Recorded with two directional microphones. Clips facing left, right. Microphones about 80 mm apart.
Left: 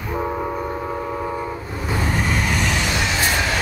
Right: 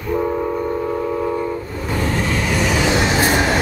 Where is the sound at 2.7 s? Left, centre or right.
Right.